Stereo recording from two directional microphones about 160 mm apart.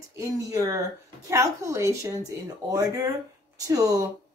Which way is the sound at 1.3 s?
20° right (ahead or behind).